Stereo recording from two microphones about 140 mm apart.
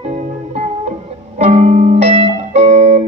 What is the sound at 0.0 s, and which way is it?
Music, 55° right (ahead or behind).